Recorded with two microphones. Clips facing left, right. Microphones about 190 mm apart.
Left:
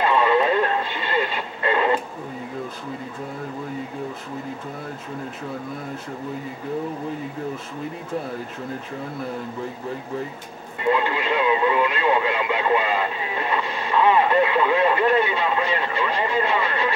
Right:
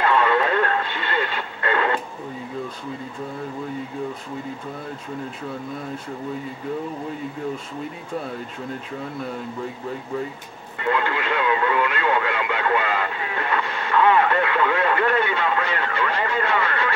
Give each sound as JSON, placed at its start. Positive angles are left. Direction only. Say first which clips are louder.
{"t": 0.0, "sound": "radio", "louder": "left 1 dB", "side_deg": 20}
{"t": 10.8, "sound": "speech", "louder": "left 2 dB", "side_deg": 20}